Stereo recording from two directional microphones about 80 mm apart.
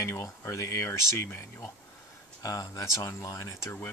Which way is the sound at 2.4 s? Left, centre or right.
Left.